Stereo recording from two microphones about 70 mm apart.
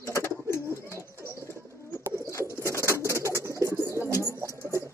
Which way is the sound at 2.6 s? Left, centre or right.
Right.